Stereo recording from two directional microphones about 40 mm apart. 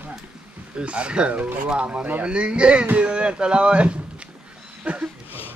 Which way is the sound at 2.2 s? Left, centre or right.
Right.